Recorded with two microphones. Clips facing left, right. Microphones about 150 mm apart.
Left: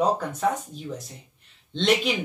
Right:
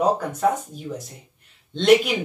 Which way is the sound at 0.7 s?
45° right (ahead or behind).